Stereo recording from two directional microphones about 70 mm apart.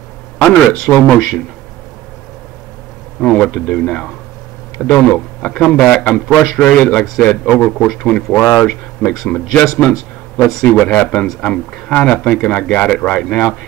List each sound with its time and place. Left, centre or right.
0.4 s speech: centre
3.2 s speech: centre
10.3 s speech: centre